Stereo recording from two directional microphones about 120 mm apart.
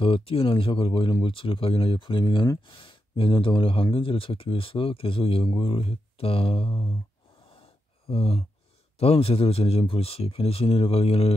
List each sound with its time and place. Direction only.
0.0 s speech: 50° left (ahead or behind)
8.1 s speech: 55° left (ahead or behind)